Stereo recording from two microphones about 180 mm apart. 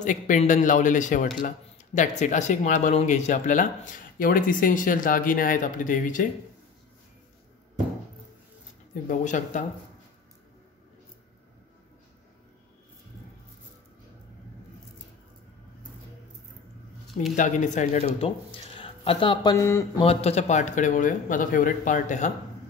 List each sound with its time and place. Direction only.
0.0 s speech: 45° left (ahead or behind)
9.0 s speech: 45° left (ahead or behind)
17.4 s speech: 40° left (ahead or behind); by 19.9 s 15° left (ahead or behind)
20.0 s speech: 35° left (ahead or behind)